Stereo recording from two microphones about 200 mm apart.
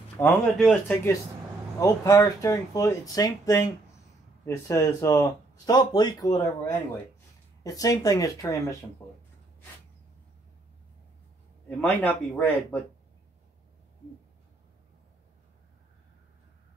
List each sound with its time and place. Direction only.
0.2 s speech: 5° left (ahead or behind)
1.8 s speech: 15° left (ahead or behind)
11.8 s speech: 10° left (ahead or behind)